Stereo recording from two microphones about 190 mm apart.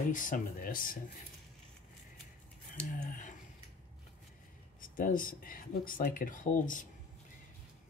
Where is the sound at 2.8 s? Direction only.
40° left (ahead or behind).